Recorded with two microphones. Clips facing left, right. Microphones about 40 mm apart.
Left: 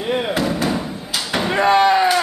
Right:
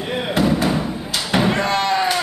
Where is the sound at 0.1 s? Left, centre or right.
Centre.